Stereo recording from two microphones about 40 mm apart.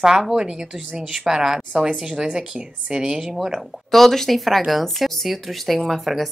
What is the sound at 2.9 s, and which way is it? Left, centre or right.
Speech, centre.